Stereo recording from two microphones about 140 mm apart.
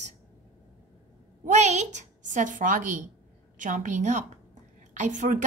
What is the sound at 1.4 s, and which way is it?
A woman's voice, 55° right (ahead or behind).